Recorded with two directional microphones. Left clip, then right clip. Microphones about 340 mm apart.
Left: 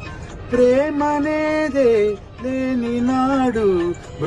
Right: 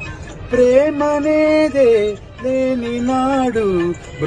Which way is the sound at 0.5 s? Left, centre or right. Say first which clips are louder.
Right 3 dB; centre.